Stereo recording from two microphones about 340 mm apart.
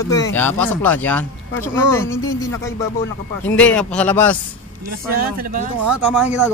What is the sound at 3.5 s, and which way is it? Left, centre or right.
Speech, centre.